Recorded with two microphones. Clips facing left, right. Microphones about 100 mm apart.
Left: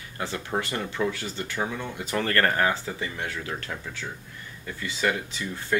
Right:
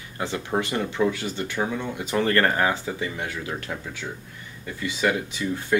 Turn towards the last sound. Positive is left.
turn(degrees=-15)  # may be behind; listen again after turning